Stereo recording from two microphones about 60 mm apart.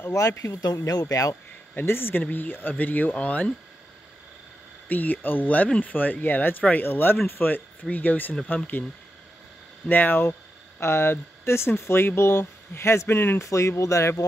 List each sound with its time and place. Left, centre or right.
0.4 s speech: left
1.8 s speech: left; by 3.5 s centre
4.8 s speech: left
9.8 s speech: left
13.4 s speech: left